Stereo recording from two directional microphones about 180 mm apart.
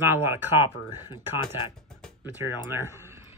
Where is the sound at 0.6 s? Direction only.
25° left (ahead or behind).